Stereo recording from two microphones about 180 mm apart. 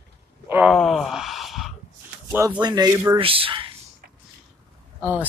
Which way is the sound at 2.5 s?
20° right (ahead or behind).